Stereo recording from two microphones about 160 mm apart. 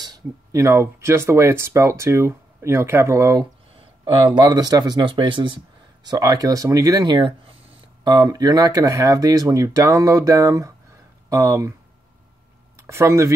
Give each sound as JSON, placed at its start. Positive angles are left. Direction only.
{"t": 0.0, "sound": "speech", "side_deg": -25}
{"t": 4.0, "sound": "speech", "side_deg": -30}
{"t": 12.7, "sound": "speech", "side_deg": -15}